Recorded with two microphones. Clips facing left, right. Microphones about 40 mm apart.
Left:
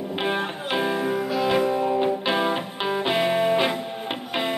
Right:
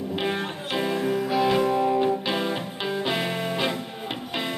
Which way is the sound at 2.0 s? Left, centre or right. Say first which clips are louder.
Left 1 dB; centre.